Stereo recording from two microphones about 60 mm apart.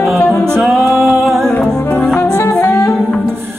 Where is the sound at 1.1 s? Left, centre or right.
Centre.